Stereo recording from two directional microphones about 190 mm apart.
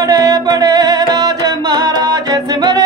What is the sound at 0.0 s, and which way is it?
Music, 20° right (ahead or behind).